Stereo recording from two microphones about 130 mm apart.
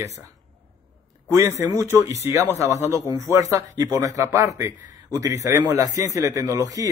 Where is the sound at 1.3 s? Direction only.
20° right (ahead or behind).